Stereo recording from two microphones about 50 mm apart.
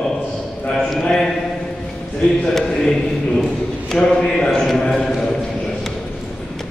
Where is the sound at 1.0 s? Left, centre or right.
Centre.